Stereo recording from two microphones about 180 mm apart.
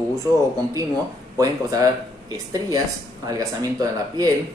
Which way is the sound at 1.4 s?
20° right (ahead or behind).